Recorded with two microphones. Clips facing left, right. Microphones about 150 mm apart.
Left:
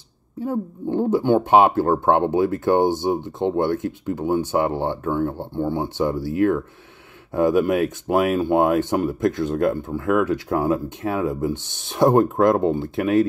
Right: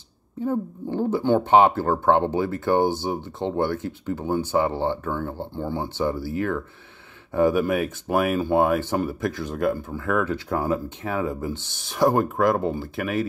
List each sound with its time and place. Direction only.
0.5 s speech: 15° left (ahead or behind)